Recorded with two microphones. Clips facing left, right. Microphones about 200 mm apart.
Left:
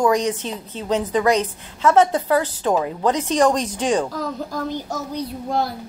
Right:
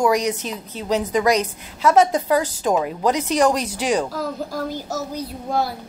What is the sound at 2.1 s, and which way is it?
A woman's voice, 15° right (ahead or behind).